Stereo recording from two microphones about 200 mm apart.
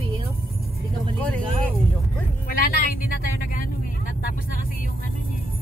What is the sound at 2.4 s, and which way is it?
Speech, 45° left (ahead or behind).